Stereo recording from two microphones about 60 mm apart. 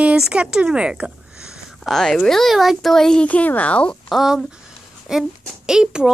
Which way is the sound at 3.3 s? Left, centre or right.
Left.